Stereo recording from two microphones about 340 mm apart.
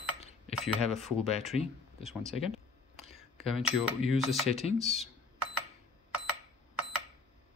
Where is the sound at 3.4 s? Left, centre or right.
Centre.